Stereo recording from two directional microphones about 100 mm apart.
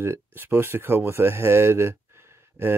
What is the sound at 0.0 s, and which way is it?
Speech, 25° right (ahead or behind).